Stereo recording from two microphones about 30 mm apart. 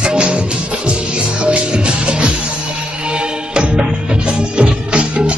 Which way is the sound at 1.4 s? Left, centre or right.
Right.